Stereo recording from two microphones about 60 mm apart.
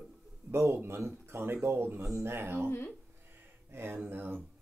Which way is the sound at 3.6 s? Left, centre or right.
Right.